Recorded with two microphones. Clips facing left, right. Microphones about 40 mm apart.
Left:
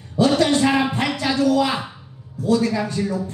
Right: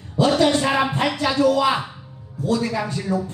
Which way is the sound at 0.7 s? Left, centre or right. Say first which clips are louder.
Left 1 dB; centre.